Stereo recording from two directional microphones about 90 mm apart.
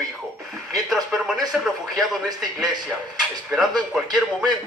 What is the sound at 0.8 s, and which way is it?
Speech, centre (ahead or behind).